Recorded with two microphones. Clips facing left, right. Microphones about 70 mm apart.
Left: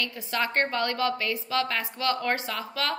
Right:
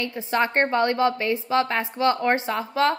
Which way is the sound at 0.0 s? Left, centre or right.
Right.